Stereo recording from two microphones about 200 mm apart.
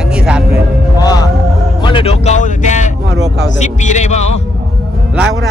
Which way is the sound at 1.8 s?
25° left (ahead or behind).